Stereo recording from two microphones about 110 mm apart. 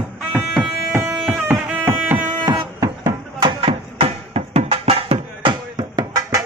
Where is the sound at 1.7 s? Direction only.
20° right (ahead or behind).